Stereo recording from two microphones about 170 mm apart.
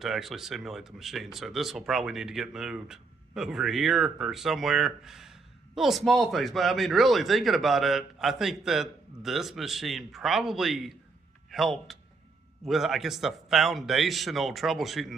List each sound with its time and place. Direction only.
0.0 s speech: centre (ahead or behind)